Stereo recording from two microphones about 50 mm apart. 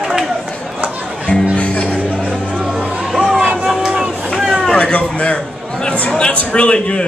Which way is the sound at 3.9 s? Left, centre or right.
Centre.